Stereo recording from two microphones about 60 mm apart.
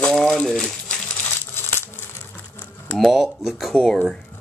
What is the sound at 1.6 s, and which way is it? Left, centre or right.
Crumpling, left.